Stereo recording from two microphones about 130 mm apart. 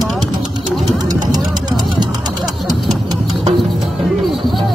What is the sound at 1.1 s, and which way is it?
Vehicle, 30° right (ahead or behind).